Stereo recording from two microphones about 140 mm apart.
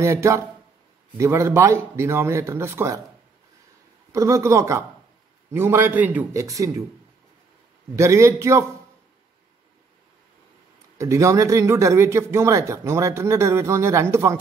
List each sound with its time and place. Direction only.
0.0 s speech: 20° right (ahead or behind)
4.1 s speech: 20° right (ahead or behind)
7.9 s speech: 20° right (ahead or behind)
11.0 s speech: 20° right (ahead or behind)